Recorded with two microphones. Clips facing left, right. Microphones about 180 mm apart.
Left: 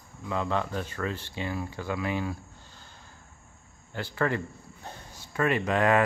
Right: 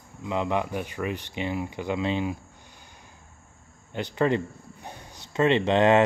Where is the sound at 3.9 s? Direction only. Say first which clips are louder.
Right 4 dB; 20° right (ahead or behind).